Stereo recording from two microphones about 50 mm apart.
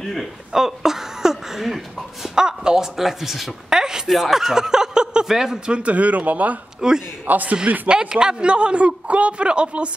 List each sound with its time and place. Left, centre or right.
0.0 s speech: centre
0.5 s speech: centre
5.8 s speech: right
6.8 s speech: centre
7.2 s speech: right
7.9 s a man's voice: centre